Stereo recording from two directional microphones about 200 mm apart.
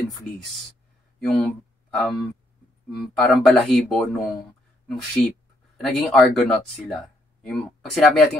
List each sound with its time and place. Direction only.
1.2 s speech: 5° left (ahead or behind)